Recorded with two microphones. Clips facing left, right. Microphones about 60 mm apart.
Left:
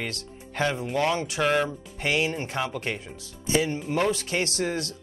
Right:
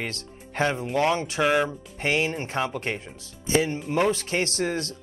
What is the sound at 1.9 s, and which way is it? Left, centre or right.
Speech, right.